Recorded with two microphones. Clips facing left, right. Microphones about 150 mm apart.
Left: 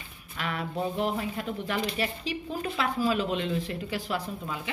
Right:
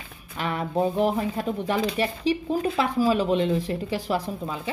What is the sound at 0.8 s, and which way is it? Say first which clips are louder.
Speech: right 5 dB; 45° right (ahead or behind).